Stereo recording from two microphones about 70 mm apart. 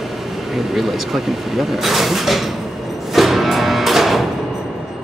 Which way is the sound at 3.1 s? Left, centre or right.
Centre.